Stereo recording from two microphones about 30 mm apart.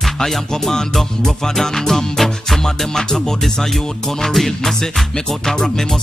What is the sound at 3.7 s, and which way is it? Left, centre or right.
Music, centre.